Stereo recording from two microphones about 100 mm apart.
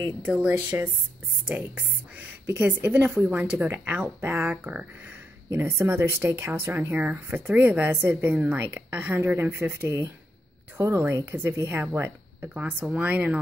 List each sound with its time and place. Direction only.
0.3 s speech: 15° right (ahead or behind)
5.5 s speech: 25° right (ahead or behind)